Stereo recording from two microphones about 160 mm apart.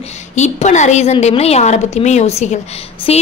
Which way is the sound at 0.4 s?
45° left (ahead or behind).